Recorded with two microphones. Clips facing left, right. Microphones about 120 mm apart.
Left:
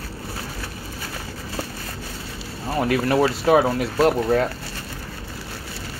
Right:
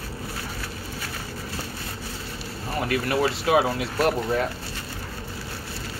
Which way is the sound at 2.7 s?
35° left (ahead or behind).